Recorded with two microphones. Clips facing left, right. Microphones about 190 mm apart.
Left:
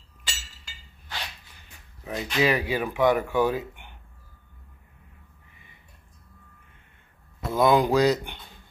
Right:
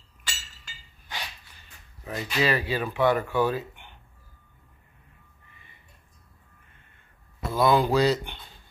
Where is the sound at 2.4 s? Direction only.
15° left (ahead or behind).